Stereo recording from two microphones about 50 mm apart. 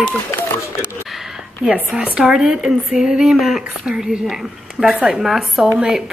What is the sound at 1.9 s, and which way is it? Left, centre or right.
Speech, centre.